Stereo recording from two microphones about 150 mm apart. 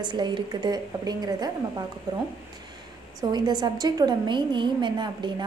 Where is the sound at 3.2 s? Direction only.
25° right (ahead or behind).